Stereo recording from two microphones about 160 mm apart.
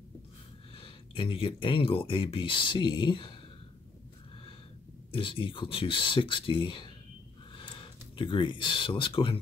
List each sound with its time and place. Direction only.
0.7 s speech: 35° left (ahead or behind)
5.1 s speech: 35° left (ahead or behind)